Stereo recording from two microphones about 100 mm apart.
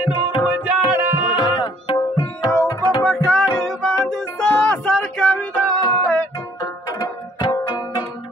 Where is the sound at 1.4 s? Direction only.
40° left (ahead or behind).